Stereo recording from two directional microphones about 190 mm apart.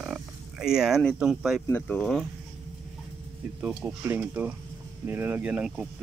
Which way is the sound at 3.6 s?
10° right (ahead or behind).